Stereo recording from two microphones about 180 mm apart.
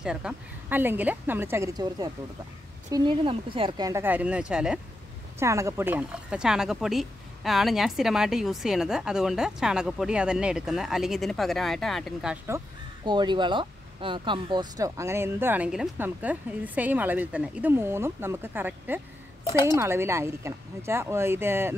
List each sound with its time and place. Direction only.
0.0 s speech: 5° right (ahead or behind)
5.4 s speech: 15° right (ahead or behind); by 12.4 s centre (ahead or behind)
13.0 s speech: 25° right (ahead or behind)